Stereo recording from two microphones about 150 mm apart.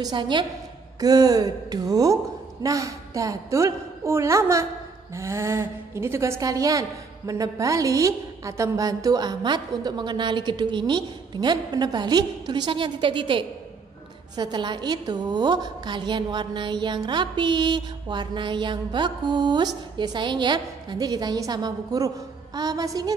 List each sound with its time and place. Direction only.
0.0 s a woman's voice: 30° right (ahead or behind)